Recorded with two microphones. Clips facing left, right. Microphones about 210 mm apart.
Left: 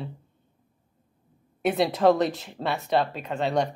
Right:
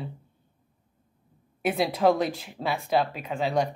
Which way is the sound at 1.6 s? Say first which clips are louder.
Left 2 dB; 5° right (ahead or behind).